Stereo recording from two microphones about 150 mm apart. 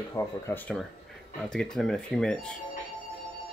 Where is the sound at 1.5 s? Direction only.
5° left (ahead or behind).